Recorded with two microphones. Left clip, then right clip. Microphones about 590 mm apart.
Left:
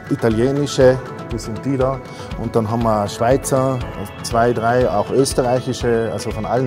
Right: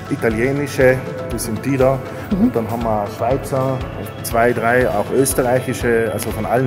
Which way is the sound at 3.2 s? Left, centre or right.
Left.